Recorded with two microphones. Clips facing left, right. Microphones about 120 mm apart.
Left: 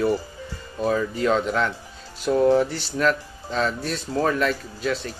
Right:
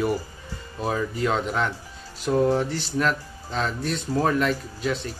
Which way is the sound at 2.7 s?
5° right (ahead or behind).